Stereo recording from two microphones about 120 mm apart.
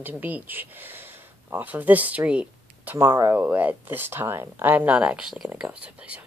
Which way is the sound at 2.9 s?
25° right (ahead or behind).